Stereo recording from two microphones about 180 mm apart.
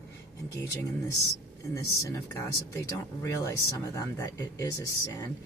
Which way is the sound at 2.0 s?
15° left (ahead or behind).